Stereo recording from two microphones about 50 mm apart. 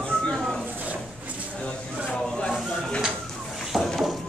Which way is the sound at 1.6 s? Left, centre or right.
Centre.